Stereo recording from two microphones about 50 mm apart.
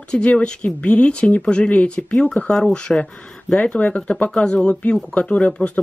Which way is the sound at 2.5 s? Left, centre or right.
Centre.